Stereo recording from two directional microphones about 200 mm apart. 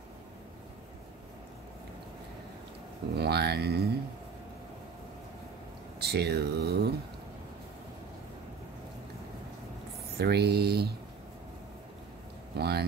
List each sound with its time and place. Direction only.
3.2 s speech: 55° right (ahead or behind)
5.9 s speech: 55° right (ahead or behind)
10.1 s speech: 55° right (ahead or behind)
12.5 s speech: 55° right (ahead or behind)